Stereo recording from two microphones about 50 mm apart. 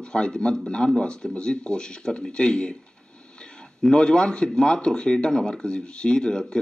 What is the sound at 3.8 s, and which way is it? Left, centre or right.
Speech, centre.